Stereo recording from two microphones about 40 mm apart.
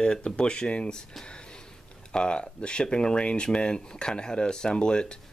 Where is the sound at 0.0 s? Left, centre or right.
Centre.